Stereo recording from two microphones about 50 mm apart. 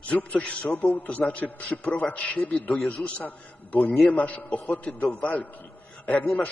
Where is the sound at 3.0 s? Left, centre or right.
Centre.